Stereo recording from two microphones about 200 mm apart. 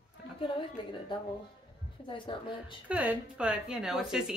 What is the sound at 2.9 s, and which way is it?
A woman's voice, 5° right (ahead or behind).